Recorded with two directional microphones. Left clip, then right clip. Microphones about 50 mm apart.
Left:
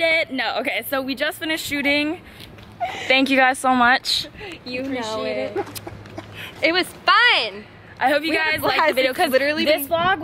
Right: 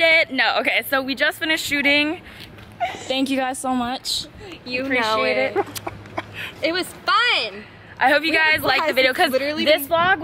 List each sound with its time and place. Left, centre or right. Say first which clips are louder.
0.0 s a woman's voice: right 4 dB; centre
0.9 s speech: right 3 dB; centre
2.9 s speech: left 9 dB; left
4.8 s speech: right 7 dB; right
6.3 s a sound: left 4 dB; left
8.0 s speech: right 2 dB; centre
8.6 s speech: even; left
9.0 s speech: right 2 dB; centre
9.3 s speech: left 3 dB; left
9.7 s speech: right 2 dB; centre